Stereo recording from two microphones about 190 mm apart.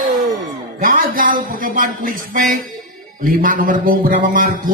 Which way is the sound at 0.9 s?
45° right (ahead or behind).